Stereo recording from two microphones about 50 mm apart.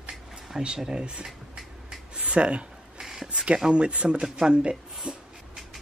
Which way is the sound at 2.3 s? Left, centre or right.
Right.